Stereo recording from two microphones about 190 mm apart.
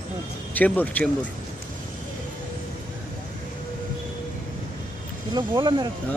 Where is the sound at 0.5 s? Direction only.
10° left (ahead or behind).